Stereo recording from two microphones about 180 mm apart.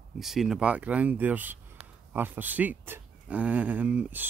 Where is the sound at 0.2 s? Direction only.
Centre (ahead or behind).